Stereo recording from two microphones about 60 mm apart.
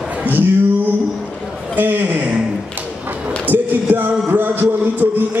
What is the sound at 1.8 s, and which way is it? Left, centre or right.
Speech, right.